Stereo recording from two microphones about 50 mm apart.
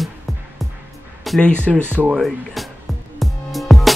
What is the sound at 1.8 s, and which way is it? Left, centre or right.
Speech, right.